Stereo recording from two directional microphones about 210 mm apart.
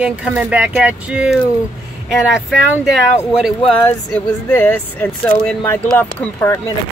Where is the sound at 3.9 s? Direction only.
10° left (ahead or behind).